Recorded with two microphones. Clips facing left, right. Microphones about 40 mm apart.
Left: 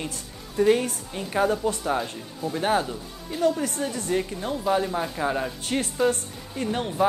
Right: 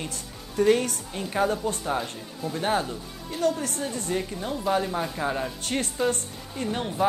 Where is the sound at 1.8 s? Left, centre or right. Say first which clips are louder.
Left 2 dB; centre.